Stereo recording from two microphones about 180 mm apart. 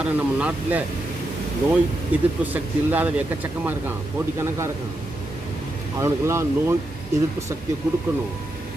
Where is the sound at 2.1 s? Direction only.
10° right (ahead or behind).